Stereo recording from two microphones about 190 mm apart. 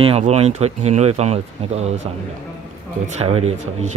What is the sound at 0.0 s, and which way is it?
Speech, 35° right (ahead or behind).